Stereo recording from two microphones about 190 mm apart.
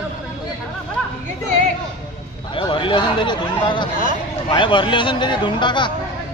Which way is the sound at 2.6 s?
25° left (ahead or behind).